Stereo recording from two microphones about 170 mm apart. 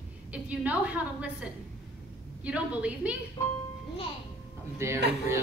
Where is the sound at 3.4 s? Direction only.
20° left (ahead or behind).